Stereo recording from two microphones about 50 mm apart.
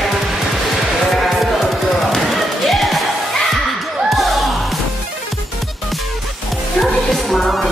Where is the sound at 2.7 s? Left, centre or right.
Centre.